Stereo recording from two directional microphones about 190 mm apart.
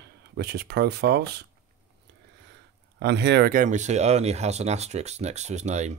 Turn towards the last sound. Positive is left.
turn(degrees=-35)  # may be behind; listen again after turning